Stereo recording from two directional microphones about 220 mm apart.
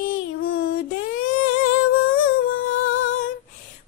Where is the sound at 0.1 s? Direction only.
70° left (ahead or behind).